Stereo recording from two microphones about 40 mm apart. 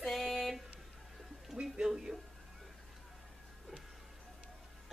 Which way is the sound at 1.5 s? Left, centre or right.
Centre.